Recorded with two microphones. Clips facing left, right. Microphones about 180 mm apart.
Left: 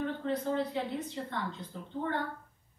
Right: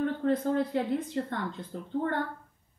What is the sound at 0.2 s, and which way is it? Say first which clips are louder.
Speech: right 5 dB; 50° right (ahead or behind).